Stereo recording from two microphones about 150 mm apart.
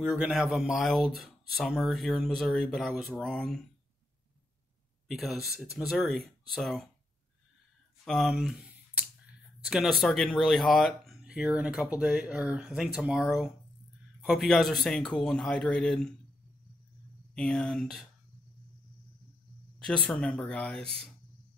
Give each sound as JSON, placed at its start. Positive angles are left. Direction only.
{"t": 0.0, "sound": "speech", "side_deg": -5}
{"t": 5.0, "sound": "speech", "side_deg": 0}
{"t": 8.0, "sound": "speech", "side_deg": 0}
{"t": 17.3, "sound": "speech", "side_deg": 5}
{"t": 19.8, "sound": "speech", "side_deg": 5}